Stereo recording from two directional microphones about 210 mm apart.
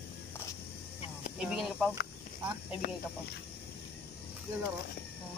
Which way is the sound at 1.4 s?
5° right (ahead or behind).